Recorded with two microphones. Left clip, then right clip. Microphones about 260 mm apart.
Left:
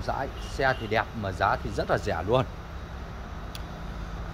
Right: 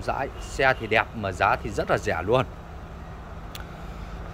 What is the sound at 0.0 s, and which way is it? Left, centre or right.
Speech, centre.